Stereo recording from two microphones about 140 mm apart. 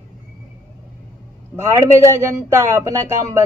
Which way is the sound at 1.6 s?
20° right (ahead or behind).